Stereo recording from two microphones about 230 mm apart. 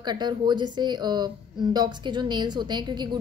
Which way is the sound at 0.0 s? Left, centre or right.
Centre.